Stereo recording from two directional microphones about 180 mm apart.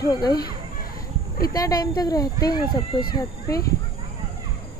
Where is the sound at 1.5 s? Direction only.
20° left (ahead or behind).